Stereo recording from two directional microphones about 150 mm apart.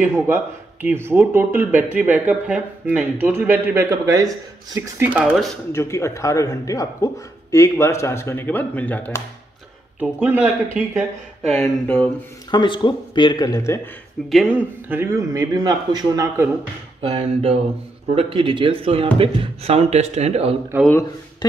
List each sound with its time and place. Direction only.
0.3 s speech: 15° right (ahead or behind)
5.7 s speech: 20° left (ahead or behind)
9.9 s speech: 10° right (ahead or behind)
11.4 s speech: 10° left (ahead or behind)
12.4 s speech: 30° left (ahead or behind)
14.3 s speech: 5° right (ahead or behind)
14.9 s speech: 15° right (ahead or behind)
17.0 s speech: 40° right (ahead or behind)
20.7 s speech: 15° right (ahead or behind)
21.4 s speech: 30° left (ahead or behind)